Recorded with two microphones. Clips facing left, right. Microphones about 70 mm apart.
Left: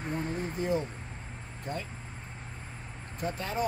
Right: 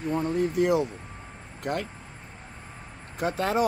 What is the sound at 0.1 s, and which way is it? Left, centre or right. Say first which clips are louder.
Speech: right 9 dB; right.